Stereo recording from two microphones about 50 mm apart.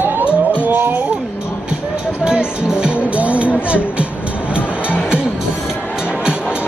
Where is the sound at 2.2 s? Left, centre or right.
Centre.